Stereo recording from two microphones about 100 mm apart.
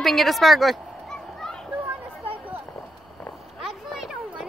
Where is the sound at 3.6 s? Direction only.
5° right (ahead or behind).